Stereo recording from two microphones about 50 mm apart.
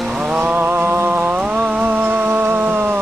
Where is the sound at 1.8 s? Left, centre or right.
Right.